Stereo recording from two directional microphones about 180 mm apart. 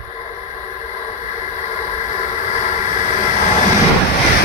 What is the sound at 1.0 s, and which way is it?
Vehicle, 40° left (ahead or behind).